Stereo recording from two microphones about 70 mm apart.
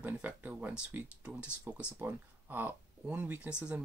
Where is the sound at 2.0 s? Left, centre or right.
Right.